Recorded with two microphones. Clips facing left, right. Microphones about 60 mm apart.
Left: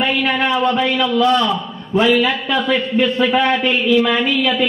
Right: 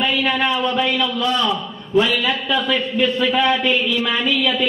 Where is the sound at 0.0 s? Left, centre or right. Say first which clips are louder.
Left 2 dB; left.